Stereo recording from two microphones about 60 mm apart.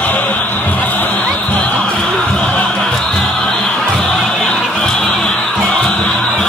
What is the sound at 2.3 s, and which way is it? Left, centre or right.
Music, centre.